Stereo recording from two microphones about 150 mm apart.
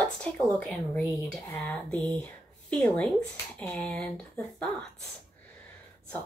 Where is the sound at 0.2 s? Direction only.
10° left (ahead or behind).